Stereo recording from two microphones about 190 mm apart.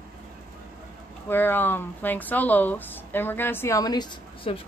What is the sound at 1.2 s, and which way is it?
Speech, 10° left (ahead or behind).